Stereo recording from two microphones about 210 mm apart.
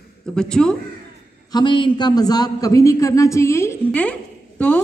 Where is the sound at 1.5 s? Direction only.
20° left (ahead or behind).